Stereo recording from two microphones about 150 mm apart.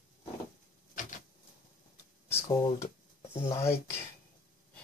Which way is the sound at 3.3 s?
45° left (ahead or behind).